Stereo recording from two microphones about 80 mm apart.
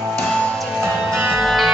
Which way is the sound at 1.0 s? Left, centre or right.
Right.